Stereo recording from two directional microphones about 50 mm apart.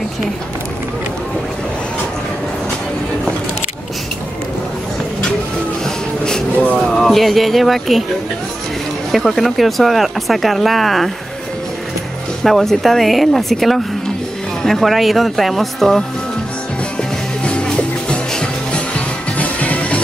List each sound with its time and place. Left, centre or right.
6.9 s speech: centre
9.1 s speech: centre
12.4 s speech: centre
17.5 s music: centre